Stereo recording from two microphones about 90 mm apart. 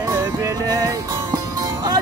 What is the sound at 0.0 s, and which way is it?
Music, 35° right (ahead or behind).